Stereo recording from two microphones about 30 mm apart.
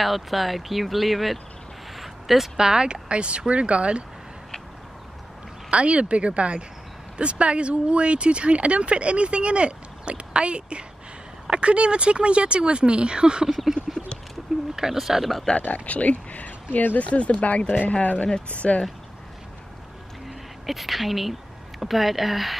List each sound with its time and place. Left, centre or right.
0.0 s speech: centre
2.0 s a sound: centre
2.5 s speech: right
5.7 s speech: right
14.8 s speech: centre
15.6 s speech: left
17.0 s speech: left
18.6 s speech: left
20.2 s speech: centre